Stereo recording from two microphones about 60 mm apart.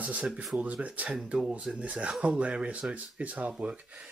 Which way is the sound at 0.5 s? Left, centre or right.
Right.